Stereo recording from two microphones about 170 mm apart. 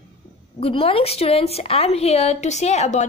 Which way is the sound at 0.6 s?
35° left (ahead or behind).